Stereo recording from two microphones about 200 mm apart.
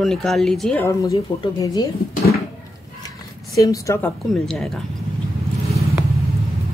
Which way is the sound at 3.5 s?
15° left (ahead or behind).